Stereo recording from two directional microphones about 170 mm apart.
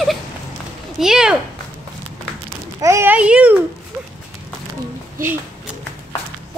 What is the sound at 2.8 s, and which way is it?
Speech, 15° right (ahead or behind).